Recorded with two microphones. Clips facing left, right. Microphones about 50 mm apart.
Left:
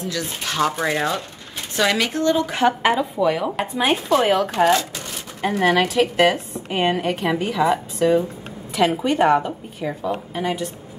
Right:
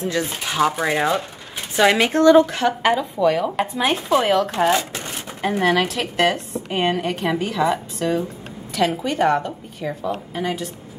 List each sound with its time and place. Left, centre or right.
0.0 s speech: right
0.4 s speech: centre
2.5 s a woman's voice: centre
2.9 s a woman's voice: centre